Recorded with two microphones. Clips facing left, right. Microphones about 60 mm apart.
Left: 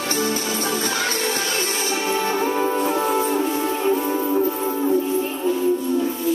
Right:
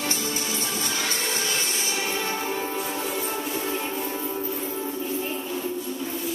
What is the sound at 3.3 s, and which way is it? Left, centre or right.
Music, centre.